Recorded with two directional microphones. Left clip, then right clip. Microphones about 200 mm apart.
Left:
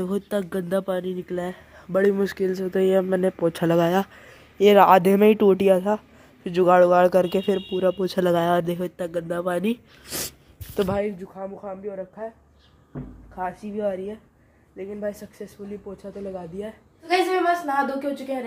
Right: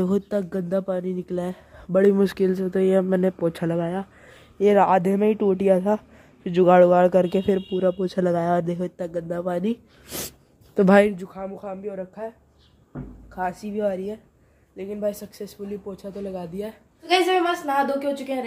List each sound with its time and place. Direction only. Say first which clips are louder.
0.3 s speech: even; centre (ahead or behind)
1.9 s speech: right 2 dB; 15° right (ahead or behind)
3.7 s speech: left 7 dB; 10° left (ahead or behind)
4.6 s speech: left 3 dB; centre (ahead or behind)
10.0 s a sound: left 2 dB; 15° right (ahead or behind)
10.8 s speech: right 5 dB; 30° right (ahead or behind)
11.1 s speech: right 1 dB; 5° right (ahead or behind)
13.4 s speech: right 2 dB; 15° right (ahead or behind)